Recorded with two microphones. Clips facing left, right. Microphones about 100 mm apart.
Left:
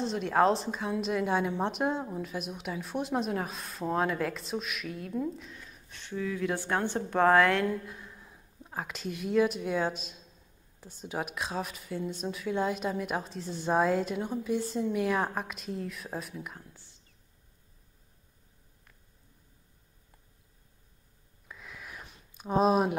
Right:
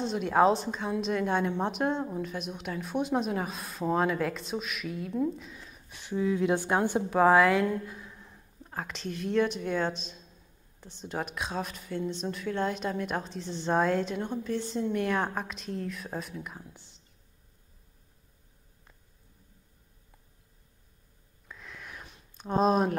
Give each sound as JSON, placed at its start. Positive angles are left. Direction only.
{"t": 0.0, "sound": "a woman's voice", "side_deg": 0}
{"t": 6.1, "sound": "a woman's voice", "side_deg": -25}
{"t": 16.6, "sound": "speech", "side_deg": -20}
{"t": 21.5, "sound": "a sound", "side_deg": 5}
{"t": 22.4, "sound": "a woman's voice", "side_deg": 5}